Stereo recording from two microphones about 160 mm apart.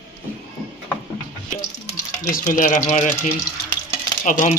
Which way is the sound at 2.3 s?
55° left (ahead or behind).